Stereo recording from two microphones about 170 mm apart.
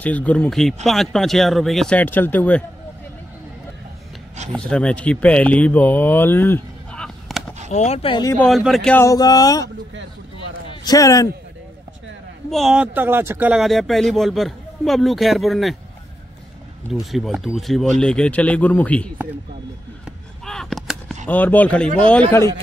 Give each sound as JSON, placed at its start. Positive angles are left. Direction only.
{"t": 0.0, "sound": "speech", "side_deg": 10}
{"t": 4.5, "sound": "speech", "side_deg": 5}
{"t": 7.7, "sound": "speech", "side_deg": 40}
{"t": 8.4, "sound": "speech", "side_deg": 0}
{"t": 8.9, "sound": "speech", "side_deg": 20}
{"t": 10.7, "sound": "a man's voice", "side_deg": 25}
{"t": 12.4, "sound": "speech", "side_deg": 0}
{"t": 17.0, "sound": "speech", "side_deg": 0}
{"t": 20.4, "sound": "artillery fire", "side_deg": 0}
{"t": 21.3, "sound": "speech", "side_deg": 10}